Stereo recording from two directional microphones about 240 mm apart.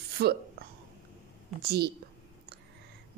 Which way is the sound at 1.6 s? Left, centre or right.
Right.